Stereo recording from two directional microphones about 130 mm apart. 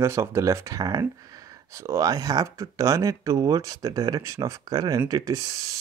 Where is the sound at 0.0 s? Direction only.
20° right (ahead or behind).